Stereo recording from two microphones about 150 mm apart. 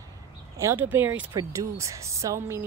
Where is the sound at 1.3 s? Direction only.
25° right (ahead or behind).